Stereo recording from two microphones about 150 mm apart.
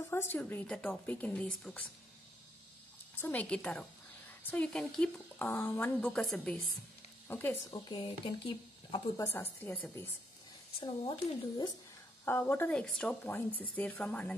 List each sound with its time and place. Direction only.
0.1 s a woman's voice: 15° left (ahead or behind)
3.2 s a woman's voice: 10° left (ahead or behind)
6.0 s a woman's voice: centre (ahead or behind)
7.6 s speech: 30° left (ahead or behind)
9.1 s a woman's voice: 15° left (ahead or behind)
10.8 s speech: 30° left (ahead or behind)
12.3 s a woman's voice: 15° left (ahead or behind)